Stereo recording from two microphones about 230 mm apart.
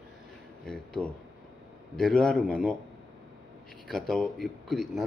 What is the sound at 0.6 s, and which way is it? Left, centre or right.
A man's voice, centre.